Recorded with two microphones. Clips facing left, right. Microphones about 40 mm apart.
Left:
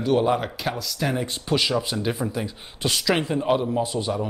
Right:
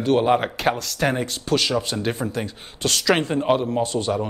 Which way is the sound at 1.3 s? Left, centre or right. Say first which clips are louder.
Right 1 dB; centre.